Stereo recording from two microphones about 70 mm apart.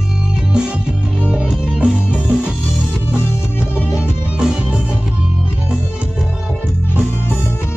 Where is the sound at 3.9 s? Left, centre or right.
Centre.